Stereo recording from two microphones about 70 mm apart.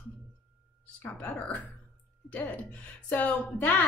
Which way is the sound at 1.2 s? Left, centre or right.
Left.